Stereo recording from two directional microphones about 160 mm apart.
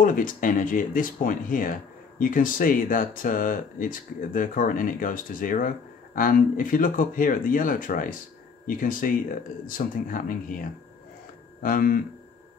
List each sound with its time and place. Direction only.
0.0 s speech: 60° left (ahead or behind)
11.6 s speech: 65° left (ahead or behind)